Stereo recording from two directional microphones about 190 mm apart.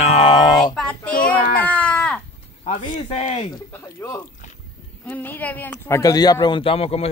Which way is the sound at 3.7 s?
10° left (ahead or behind).